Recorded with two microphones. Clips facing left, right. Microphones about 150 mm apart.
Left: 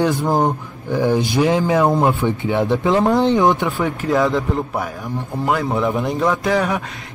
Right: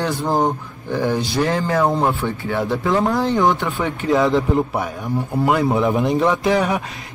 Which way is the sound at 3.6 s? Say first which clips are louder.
Left 1 dB; centre (ahead or behind).